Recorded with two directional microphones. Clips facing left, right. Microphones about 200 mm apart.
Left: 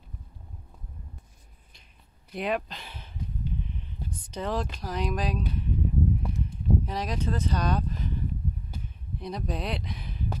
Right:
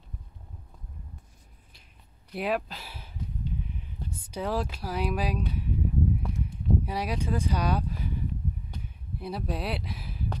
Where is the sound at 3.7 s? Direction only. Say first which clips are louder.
Left 1 dB; 10° right (ahead or behind).